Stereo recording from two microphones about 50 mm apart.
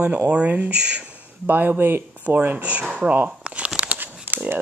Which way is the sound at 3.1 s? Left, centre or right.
Right.